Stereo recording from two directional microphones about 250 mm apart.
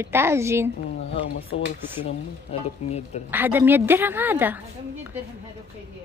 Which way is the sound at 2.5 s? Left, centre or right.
Left.